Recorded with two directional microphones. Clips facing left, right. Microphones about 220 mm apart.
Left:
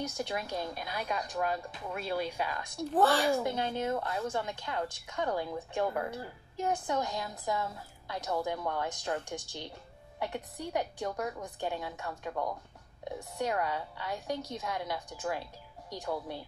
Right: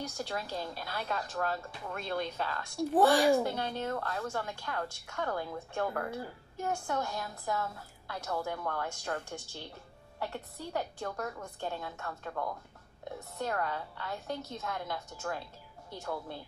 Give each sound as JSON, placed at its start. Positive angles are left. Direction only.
{"t": 0.2, "sound": "a woman's voice", "side_deg": 15}
{"t": 2.9, "sound": "a woman's voice", "side_deg": -15}
{"t": 3.4, "sound": "a woman's voice", "side_deg": 20}